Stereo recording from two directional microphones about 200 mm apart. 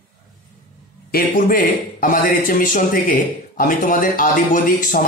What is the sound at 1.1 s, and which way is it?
Speech, 45° left (ahead or behind).